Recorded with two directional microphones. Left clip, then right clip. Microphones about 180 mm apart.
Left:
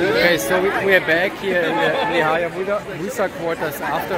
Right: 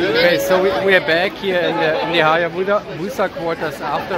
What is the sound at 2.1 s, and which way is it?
Speech, 20° right (ahead or behind).